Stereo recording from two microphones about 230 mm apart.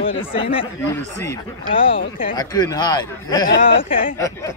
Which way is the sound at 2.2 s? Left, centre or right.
Centre.